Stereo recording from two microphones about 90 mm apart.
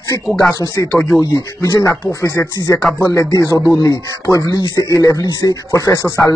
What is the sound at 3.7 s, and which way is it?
Speech, 50° left (ahead or behind).